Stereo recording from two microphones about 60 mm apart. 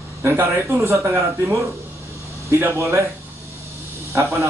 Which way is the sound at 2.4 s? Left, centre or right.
Right.